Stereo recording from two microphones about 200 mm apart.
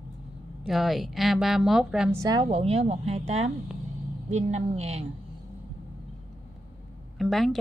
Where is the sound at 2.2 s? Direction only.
20° right (ahead or behind).